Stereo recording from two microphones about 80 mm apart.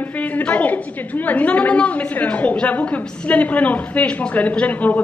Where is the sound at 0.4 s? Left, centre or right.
Centre.